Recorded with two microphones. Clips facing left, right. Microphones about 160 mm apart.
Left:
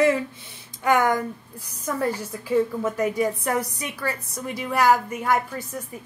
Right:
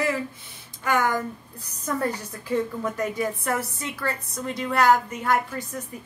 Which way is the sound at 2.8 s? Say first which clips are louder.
Left 4 dB; 10° left (ahead or behind).